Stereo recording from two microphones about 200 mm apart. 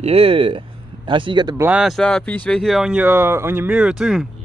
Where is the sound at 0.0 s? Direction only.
30° right (ahead or behind).